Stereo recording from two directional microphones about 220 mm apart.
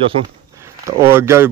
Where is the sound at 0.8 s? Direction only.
10° right (ahead or behind).